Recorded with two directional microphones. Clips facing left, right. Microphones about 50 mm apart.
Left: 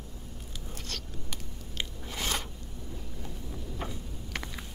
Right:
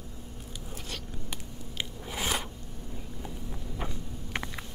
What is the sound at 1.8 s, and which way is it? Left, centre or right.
Biting, centre.